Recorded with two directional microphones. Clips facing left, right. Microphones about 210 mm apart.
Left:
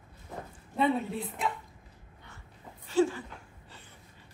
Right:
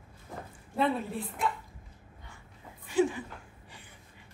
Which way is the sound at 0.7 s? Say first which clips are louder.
Left 1 dB; centre (ahead or behind).